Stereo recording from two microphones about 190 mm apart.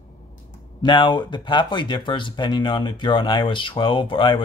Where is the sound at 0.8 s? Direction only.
25° left (ahead or behind).